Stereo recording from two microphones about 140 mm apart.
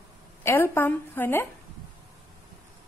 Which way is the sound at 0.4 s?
15° left (ahead or behind).